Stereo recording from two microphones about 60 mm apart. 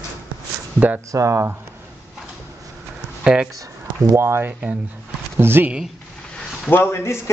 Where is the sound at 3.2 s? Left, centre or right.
Centre.